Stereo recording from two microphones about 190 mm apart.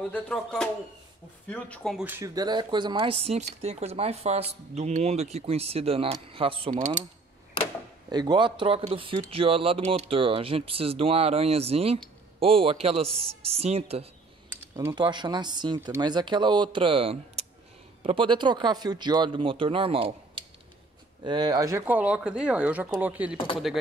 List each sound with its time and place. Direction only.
0.0 s speech: 5° left (ahead or behind)
2.0 s speech: 15° right (ahead or behind)
8.1 s speech: 20° right (ahead or behind)
14.8 s speech: 20° right (ahead or behind)
23.3 s speech: 25° left (ahead or behind)